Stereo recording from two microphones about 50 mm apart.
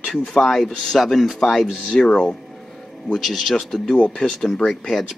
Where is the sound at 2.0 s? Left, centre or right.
Centre.